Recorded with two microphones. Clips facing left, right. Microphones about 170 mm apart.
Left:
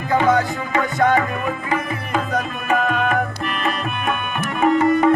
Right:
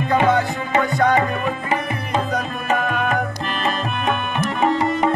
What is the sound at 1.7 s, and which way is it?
Music, 25° right (ahead or behind).